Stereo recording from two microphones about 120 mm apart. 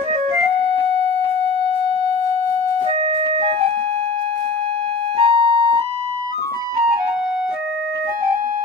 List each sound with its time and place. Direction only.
3.3 s music: 60° right (ahead or behind)
5.1 s music: 50° right (ahead or behind)